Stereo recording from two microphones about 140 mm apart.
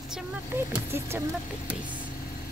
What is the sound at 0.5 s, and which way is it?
Speech, 15° right (ahead or behind).